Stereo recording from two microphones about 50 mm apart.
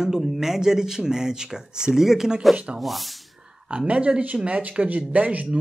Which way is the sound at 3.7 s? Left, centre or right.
Right.